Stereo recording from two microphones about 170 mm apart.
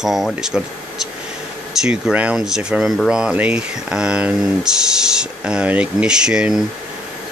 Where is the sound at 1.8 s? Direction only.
5° right (ahead or behind).